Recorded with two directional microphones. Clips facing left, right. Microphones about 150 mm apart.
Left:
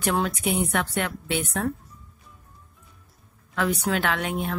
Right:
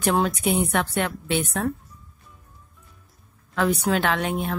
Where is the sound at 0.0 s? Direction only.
30° right (ahead or behind).